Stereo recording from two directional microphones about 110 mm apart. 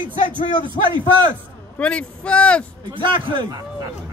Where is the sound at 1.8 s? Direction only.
10° left (ahead or behind).